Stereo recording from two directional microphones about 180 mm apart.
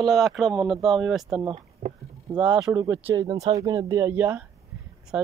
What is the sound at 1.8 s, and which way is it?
Speech, 40° right (ahead or behind).